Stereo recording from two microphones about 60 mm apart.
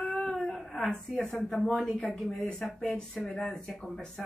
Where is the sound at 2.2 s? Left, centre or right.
Centre.